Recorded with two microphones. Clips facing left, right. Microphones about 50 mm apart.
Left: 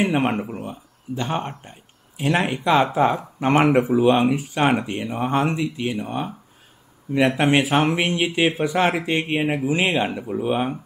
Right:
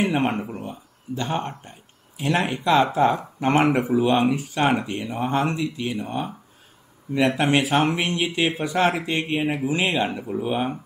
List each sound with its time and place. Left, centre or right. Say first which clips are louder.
0.1 s speech: left 2 dB; centre
10.0 s speech: left 2 dB; centre